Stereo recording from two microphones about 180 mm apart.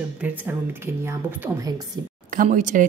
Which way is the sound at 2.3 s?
45° right (ahead or behind).